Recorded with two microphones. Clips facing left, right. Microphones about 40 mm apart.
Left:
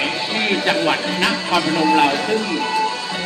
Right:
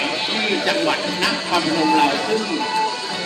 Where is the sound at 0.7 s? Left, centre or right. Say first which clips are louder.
Left 1 dB; left.